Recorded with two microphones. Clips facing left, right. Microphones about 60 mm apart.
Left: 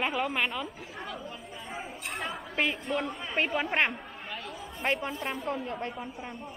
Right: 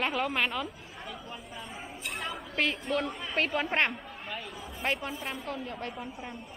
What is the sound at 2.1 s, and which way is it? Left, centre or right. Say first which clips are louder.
Speech: left 1 dB; centre.